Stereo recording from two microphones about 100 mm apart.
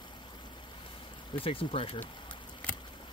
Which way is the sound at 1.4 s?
65° left (ahead or behind).